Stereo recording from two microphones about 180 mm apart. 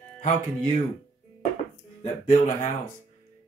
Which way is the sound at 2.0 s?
45° left (ahead or behind).